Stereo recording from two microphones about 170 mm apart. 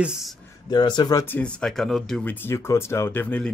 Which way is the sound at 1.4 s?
5° left (ahead or behind).